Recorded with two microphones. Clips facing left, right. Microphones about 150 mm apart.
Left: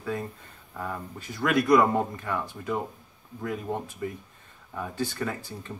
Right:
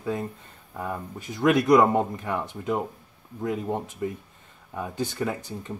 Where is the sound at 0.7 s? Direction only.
15° right (ahead or behind).